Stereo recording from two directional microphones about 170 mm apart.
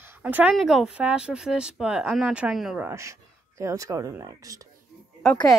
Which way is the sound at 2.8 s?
15° right (ahead or behind).